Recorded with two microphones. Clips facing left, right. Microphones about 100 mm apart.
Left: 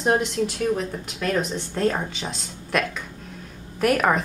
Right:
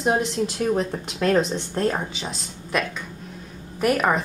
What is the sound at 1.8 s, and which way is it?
A woman's voice, 5° right (ahead or behind).